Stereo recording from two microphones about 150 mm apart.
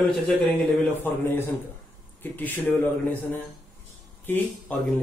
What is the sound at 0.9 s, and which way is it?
Speech, 15° left (ahead or behind).